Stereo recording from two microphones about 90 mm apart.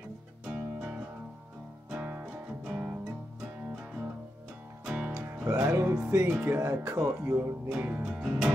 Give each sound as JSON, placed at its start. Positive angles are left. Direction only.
{"t": 0.5, "sound": "music", "side_deg": -10}
{"t": 4.8, "sound": "music", "side_deg": -10}
{"t": 5.2, "sound": "music", "side_deg": -20}
{"t": 5.5, "sound": "music", "side_deg": -35}
{"t": 6.0, "sound": "speech", "side_deg": -30}
{"t": 7.7, "sound": "music", "side_deg": -10}